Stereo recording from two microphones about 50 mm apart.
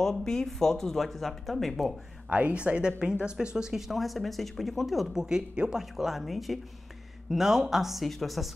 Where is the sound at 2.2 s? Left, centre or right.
Right; by 5.2 s centre.